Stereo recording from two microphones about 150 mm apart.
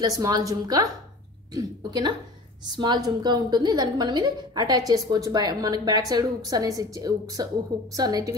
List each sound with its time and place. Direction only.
0.0 s a woman's voice: 25° right (ahead or behind)